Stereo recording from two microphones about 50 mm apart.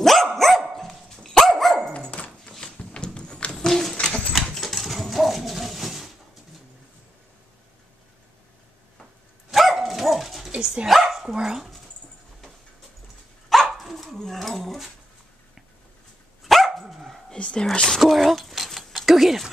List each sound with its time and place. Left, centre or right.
0.0 s dog: centre
1.9 s dog: left
2.6 s a sound: centre
3.5 s a sound: centre
4.6 s dog: centre
9.5 s dog: centre
10.5 s dog: centre
10.9 s dog: centre
13.5 s dog: centre
16.4 s dog: centre
17.3 s whispering: centre
17.8 s a sound: centre